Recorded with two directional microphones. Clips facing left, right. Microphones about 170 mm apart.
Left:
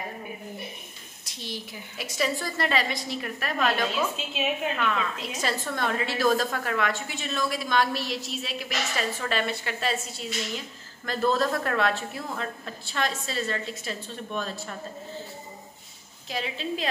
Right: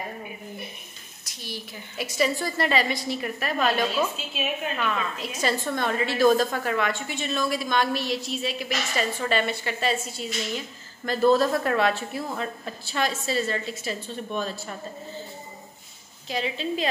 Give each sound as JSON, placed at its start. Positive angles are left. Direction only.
{"t": 1.4, "sound": "a sound", "side_deg": 20}
{"t": 2.0, "sound": "a woman's voice", "side_deg": 0}
{"t": 4.3, "sound": "a woman's voice", "side_deg": 20}
{"t": 4.7, "sound": "a woman's voice", "side_deg": -5}
{"t": 16.3, "sound": "a woman's voice", "side_deg": 0}